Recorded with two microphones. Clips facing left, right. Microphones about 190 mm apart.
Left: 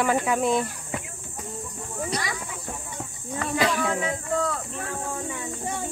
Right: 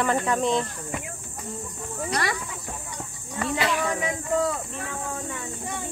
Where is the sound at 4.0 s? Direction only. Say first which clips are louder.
Right 1 dB; 15° right (ahead or behind).